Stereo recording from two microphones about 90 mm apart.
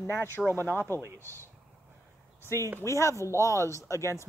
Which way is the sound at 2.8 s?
35° left (ahead or behind).